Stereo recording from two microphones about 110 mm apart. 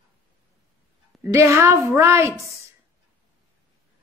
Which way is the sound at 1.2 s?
25° right (ahead or behind).